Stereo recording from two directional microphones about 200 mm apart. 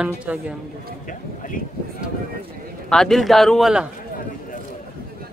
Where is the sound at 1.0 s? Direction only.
40° left (ahead or behind).